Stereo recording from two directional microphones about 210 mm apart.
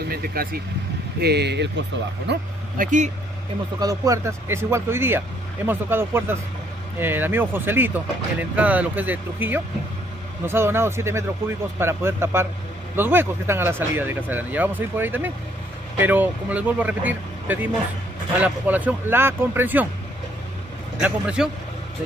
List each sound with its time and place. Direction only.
0.1 s speech: 45° right (ahead or behind)
2.8 s speech: 35° right (ahead or behind)
3.8 s speech: 15° right (ahead or behind)
21.0 s a man's voice: 5° right (ahead or behind)